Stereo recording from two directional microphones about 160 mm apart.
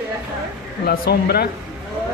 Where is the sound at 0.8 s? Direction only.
80° left.